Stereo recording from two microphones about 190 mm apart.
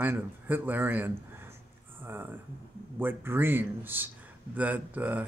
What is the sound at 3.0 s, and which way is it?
Speech, 10° right (ahead or behind).